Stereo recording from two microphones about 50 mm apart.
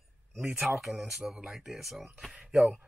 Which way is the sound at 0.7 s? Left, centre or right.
Centre.